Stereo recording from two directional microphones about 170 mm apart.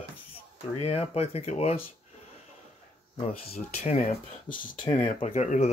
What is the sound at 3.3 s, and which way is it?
Speech, 40° left (ahead or behind).